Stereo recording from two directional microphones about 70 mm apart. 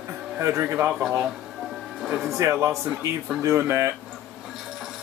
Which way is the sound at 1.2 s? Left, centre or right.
Centre.